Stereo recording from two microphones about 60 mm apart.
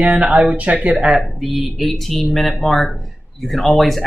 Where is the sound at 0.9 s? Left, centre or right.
Centre.